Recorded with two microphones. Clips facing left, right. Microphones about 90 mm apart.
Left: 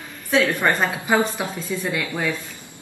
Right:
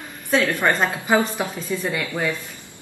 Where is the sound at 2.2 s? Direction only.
15° left (ahead or behind).